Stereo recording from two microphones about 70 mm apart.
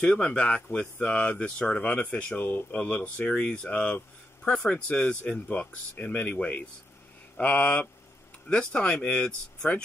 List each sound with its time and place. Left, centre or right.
0.0 s speech: centre